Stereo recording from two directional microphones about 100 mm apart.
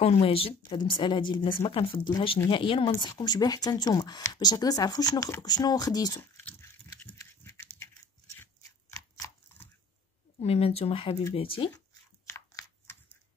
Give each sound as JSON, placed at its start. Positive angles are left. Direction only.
{"t": 0.0, "sound": "speech", "side_deg": 80}
{"t": 0.7, "sound": "speech", "side_deg": 50}
{"t": 1.6, "sound": "speech", "side_deg": 65}
{"t": 3.0, "sound": "speech", "side_deg": 50}
{"t": 7.2, "sound": "dog", "side_deg": 25}
{"t": 8.9, "sound": "a sound", "side_deg": 30}
{"t": 10.4, "sound": "speech", "side_deg": 90}
{"t": 12.3, "sound": "a sound", "side_deg": 25}